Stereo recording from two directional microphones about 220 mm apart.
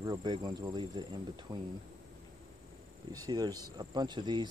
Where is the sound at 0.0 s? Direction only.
20° right (ahead or behind).